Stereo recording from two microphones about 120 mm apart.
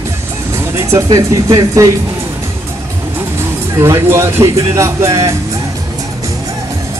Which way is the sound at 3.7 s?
20° right (ahead or behind).